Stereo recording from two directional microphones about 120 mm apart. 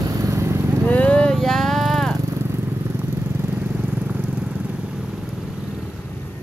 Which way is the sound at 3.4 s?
15° right (ahead or behind).